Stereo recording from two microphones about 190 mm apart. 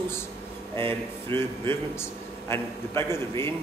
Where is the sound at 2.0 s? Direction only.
15° left (ahead or behind).